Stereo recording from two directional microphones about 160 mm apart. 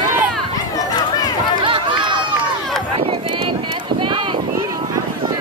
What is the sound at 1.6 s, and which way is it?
Run, 30° right (ahead or behind).